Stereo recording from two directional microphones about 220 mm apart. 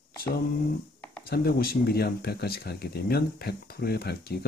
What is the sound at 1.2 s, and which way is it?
Speech, 45° left (ahead or behind).